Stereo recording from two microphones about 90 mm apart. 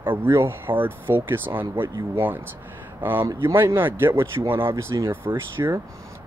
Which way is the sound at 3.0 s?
20° right (ahead or behind).